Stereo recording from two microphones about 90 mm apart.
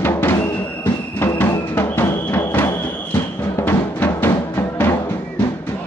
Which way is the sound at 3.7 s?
20° left (ahead or behind).